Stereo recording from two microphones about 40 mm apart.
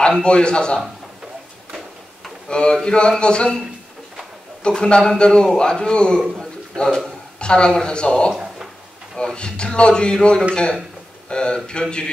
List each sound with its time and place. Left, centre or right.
0.2 s a man's voice: left
2.4 s a man's voice: left
4.6 s a man's voice: left
6.4 s a sound: centre
7.3 s a man's voice: left